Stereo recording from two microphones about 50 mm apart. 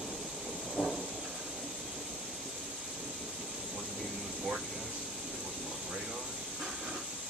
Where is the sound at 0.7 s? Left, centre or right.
Centre.